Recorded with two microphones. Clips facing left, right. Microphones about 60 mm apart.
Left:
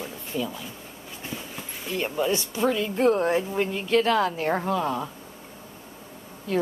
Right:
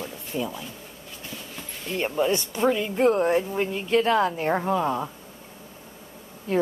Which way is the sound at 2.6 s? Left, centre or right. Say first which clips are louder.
Right 1 dB; centre.